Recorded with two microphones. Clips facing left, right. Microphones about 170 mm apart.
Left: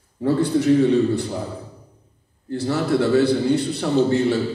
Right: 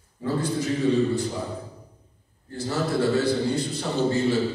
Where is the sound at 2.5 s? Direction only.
65° left (ahead or behind).